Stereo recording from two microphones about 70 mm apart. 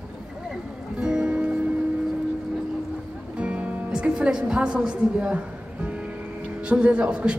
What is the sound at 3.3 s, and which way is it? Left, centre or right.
Music, centre.